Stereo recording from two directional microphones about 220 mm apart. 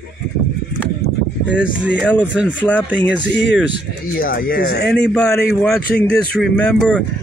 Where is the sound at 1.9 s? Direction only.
5° left (ahead or behind).